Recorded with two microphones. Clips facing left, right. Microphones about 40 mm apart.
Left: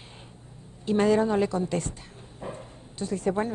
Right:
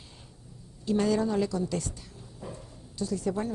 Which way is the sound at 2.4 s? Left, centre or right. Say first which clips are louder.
Left 5 dB; left.